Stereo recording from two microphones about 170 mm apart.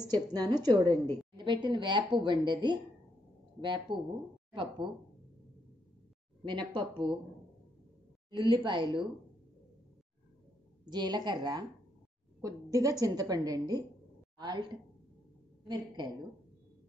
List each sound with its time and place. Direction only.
0.0 s a woman's voice: 20° right (ahead or behind)
6.4 s a woman's voice: 30° right (ahead or behind)
8.5 s a woman's voice: 30° right (ahead or behind)
10.9 s a woman's voice: 25° right (ahead or behind)